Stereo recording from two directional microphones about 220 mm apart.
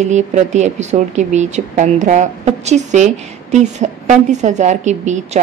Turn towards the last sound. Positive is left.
turn(degrees=-30)  # may be behind; listen again after turning